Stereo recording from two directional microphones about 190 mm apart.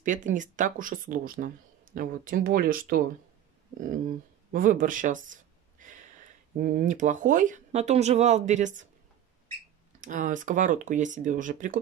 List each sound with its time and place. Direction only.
0.0 s speech: 40° right (ahead or behind)
9.9 s speech: 40° right (ahead or behind)